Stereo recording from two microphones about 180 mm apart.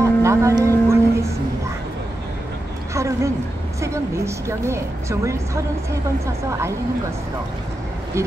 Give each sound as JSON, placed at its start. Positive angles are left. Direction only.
{"t": 0.0, "sound": "vehicle", "side_deg": -15}
{"t": 2.9, "sound": "a sound", "side_deg": -15}
{"t": 3.8, "sound": "a woman's voice", "side_deg": -15}